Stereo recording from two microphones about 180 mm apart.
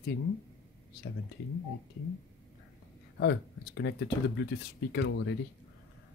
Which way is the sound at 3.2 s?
75° left (ahead or behind).